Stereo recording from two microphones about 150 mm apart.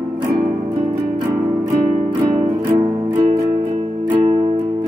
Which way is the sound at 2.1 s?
35° right (ahead or behind).